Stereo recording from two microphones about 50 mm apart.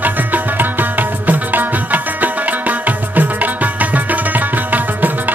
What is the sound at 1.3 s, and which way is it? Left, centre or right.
Music, right.